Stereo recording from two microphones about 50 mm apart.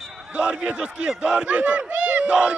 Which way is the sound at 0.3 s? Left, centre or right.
Right.